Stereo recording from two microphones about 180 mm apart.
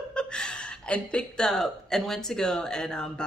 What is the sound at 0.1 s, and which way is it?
Speech, 5° left (ahead or behind).